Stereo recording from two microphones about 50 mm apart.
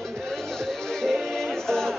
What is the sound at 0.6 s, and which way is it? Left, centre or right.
Music, centre.